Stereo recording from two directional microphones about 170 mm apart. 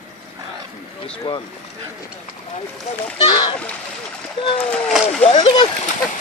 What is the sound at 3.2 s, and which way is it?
Speech, 25° left (ahead or behind).